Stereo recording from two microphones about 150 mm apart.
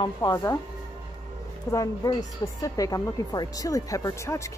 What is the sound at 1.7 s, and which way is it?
A woman's voice, 25° left (ahead or behind).